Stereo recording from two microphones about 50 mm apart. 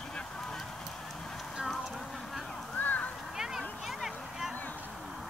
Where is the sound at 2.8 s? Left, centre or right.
Left.